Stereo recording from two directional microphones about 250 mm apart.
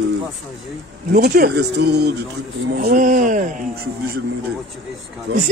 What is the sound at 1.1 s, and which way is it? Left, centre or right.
A man's voice, right.